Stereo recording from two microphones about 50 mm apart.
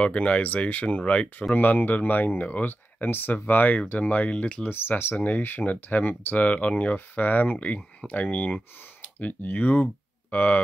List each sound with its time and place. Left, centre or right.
0.0 s speech: left
1.5 s speech: left
4.6 s speech: left
5.1 s speech: left